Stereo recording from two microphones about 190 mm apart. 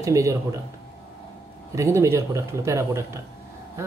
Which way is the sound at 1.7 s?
15° right (ahead or behind).